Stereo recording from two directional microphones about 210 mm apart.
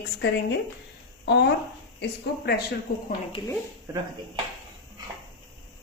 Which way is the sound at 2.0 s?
50° left (ahead or behind).